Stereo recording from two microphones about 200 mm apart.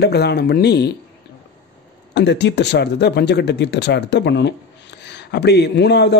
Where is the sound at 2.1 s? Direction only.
60° left (ahead or behind).